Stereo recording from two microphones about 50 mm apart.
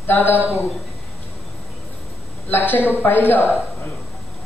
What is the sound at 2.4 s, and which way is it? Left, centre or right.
Speech, left.